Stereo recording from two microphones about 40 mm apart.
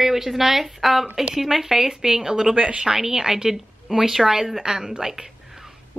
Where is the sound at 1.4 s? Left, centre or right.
Centre.